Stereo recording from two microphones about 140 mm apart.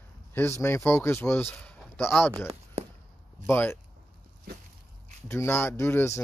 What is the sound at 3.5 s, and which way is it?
Speech, 15° left (ahead or behind).